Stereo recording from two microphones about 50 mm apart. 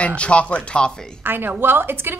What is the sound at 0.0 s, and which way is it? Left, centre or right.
Speech, left.